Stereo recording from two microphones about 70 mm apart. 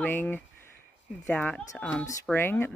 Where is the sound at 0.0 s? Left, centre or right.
Left.